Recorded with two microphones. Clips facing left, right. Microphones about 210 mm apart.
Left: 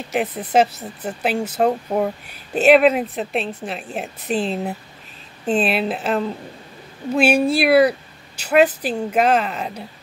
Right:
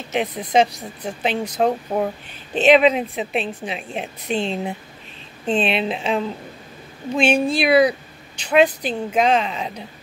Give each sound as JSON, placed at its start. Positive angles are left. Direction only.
{"t": 0.1, "sound": "speech", "side_deg": 5}